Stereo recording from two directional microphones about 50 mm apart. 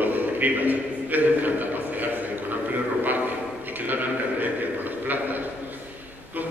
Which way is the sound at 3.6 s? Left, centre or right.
Right.